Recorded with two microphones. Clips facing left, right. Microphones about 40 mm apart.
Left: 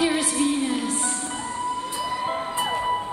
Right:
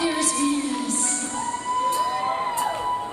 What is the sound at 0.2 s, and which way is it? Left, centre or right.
Music, left.